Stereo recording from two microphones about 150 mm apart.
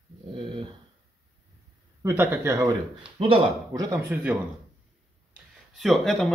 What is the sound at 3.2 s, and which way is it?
Speech, 40° right (ahead or behind).